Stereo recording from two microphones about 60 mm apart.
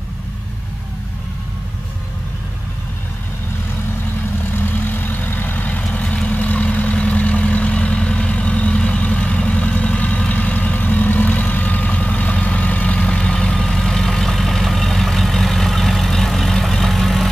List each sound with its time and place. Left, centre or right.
4.6 s vehicle: left
5.9 s vehicle: centre